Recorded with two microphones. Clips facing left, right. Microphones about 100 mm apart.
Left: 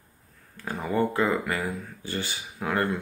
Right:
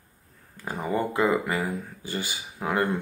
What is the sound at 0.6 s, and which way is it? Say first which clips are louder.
Speech: left 1 dB; 15° right (ahead or behind).